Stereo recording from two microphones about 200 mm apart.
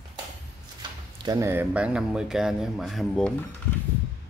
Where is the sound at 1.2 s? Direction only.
15° right (ahead or behind); by 3.3 s centre (ahead or behind).